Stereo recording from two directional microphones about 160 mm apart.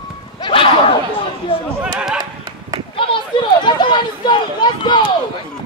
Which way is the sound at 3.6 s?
30° left (ahead or behind).